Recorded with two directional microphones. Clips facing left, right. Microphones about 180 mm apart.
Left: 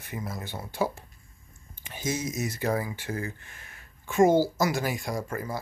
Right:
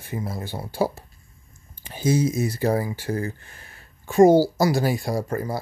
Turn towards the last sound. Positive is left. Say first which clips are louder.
# right 6 dB
turn(degrees=-35)  # may be behind; listen again after turning